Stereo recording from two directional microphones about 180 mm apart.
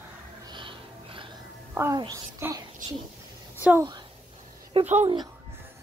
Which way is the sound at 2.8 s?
40° right (ahead or behind).